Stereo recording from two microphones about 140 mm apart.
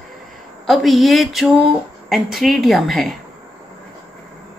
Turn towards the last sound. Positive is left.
turn(degrees=0)  # may be behind; listen again after turning